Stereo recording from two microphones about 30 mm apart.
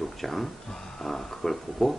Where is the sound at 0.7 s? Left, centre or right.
Centre.